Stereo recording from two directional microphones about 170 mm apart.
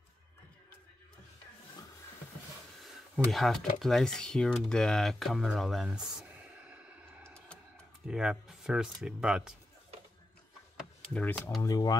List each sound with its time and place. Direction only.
3.3 s speech: centre (ahead or behind)
8.1 s speech: 5° right (ahead or behind)
11.1 s speech: 10° left (ahead or behind)
11.6 s speech: 20° left (ahead or behind)